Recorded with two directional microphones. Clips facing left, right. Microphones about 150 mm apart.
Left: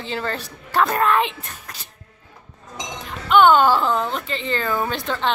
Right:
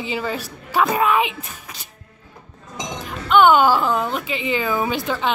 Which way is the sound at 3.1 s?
5° right (ahead or behind).